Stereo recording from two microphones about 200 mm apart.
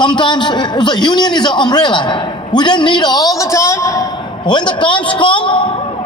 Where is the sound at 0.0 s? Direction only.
25° left (ahead or behind).